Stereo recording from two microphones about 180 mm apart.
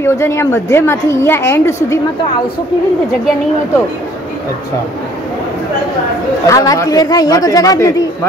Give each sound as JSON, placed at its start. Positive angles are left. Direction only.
{"t": 0.0, "sound": "a woman's voice", "side_deg": 15}
{"t": 6.4, "sound": "a man's voice", "side_deg": 20}